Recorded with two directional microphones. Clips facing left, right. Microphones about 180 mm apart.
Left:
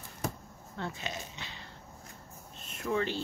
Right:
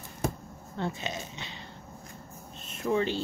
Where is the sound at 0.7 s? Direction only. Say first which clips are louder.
Right 5 dB; 25° right (ahead or behind).